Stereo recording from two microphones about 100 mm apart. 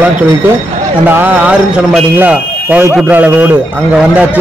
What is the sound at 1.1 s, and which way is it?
A man's voice, 15° right (ahead or behind).